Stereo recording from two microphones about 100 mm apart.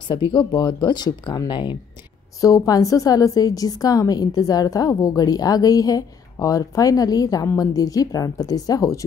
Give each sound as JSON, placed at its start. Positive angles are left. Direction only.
{"t": 0.1, "sound": "speech", "side_deg": 50}
{"t": 2.4, "sound": "a woman's voice", "side_deg": 35}